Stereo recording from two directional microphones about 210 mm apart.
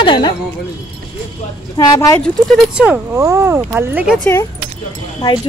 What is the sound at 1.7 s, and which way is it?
Speech, 15° left (ahead or behind).